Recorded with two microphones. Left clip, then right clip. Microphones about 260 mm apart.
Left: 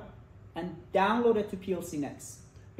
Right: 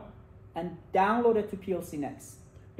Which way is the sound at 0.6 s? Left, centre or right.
Centre.